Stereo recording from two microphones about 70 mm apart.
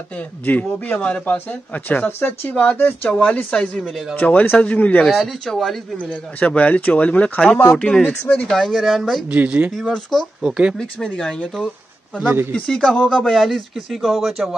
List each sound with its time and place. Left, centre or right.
0.5 s speech: left
2.5 s speech: centre
5.0 s speech: centre
6.4 s speech: centre
8.6 s speech: centre
9.3 s speech: right
10.4 s speech: centre
11.1 s speech: centre